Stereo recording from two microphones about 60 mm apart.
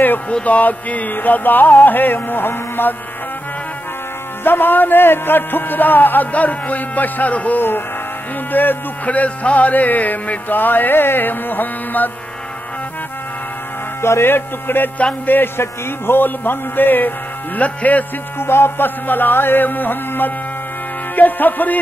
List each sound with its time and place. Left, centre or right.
0.3 s a man's voice: left
4.5 s a man's voice: left
8.5 s music: left
14.0 s a man's voice: left
17.6 s music: left
18.4 s a man's voice: left
21.1 s music: left